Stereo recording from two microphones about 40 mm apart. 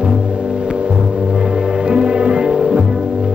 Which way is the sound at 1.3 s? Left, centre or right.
Right.